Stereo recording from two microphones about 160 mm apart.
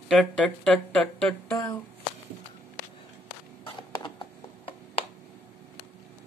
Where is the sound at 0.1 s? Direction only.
5° left (ahead or behind).